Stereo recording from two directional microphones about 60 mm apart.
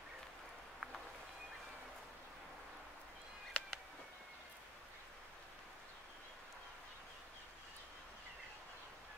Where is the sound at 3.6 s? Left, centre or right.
Centre.